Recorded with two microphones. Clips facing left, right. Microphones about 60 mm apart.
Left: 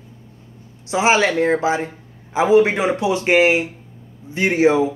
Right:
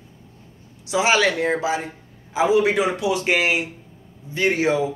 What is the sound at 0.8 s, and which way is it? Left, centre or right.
Speech, left.